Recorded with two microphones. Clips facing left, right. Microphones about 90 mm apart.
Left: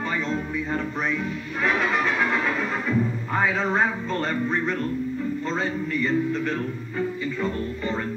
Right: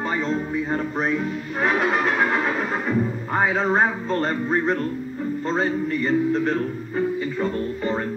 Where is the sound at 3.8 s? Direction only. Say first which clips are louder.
Right 3 dB; 40° right (ahead or behind).